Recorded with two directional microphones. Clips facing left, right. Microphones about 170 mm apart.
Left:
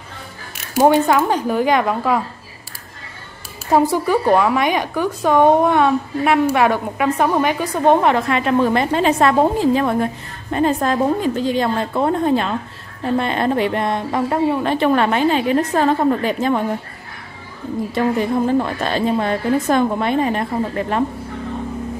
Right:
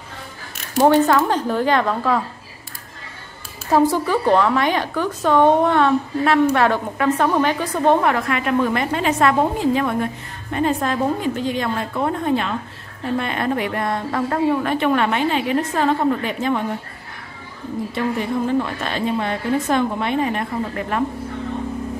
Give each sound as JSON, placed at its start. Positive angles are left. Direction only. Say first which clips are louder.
{"t": 0.7, "sound": "a woman's voice", "louder": "left 1 dB", "side_deg": 15}
{"t": 3.7, "sound": "a woman's voice", "louder": "left 1 dB", "side_deg": 15}
{"t": 14.7, "sound": "a woman's voice", "louder": "left 3 dB", "side_deg": 35}
{"t": 18.6, "sound": "a woman's voice", "louder": "left 3 dB", "side_deg": 35}